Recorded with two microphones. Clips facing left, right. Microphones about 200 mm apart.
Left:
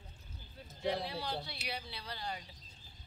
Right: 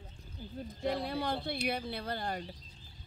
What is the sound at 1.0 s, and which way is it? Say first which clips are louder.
Speech: right 6 dB; 55° right (ahead or behind).